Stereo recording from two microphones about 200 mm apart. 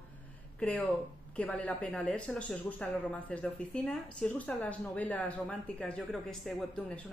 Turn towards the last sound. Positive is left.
turn(degrees=5)  # may be behind; listen again after turning